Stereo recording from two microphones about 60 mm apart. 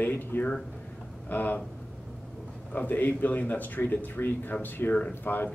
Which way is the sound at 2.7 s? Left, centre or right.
Left.